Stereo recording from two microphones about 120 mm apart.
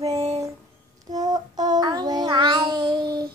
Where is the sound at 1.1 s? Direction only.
35° right (ahead or behind).